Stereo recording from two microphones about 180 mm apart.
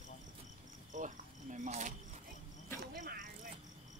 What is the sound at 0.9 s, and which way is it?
Cricket, 45° right (ahead or behind).